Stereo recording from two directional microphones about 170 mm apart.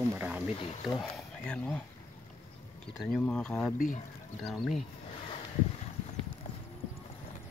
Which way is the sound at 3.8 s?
50° left (ahead or behind).